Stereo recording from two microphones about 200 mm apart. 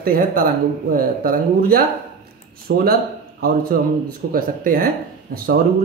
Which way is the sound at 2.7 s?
65° right (ahead or behind).